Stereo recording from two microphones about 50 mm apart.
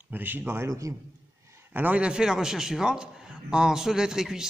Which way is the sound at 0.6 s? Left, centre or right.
Right.